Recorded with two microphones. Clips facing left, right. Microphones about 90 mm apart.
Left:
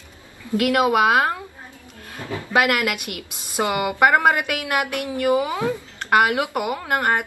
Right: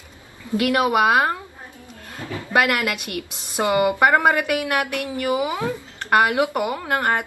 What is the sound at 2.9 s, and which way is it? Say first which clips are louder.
Speech: right 1 dB; 20° left (ahead or behind).